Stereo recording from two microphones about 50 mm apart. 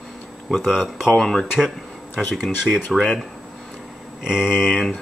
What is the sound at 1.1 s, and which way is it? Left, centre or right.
Speech, centre.